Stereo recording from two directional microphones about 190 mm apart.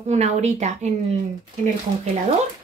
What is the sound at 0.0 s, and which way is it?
A woman's voice, 35° right (ahead or behind).